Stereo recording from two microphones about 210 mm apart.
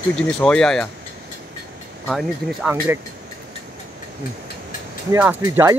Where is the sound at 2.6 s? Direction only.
10° right (ahead or behind).